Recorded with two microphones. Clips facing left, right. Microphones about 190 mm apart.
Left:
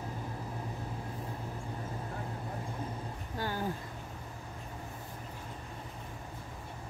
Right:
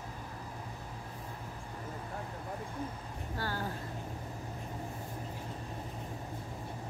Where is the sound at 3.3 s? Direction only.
15° left (ahead or behind).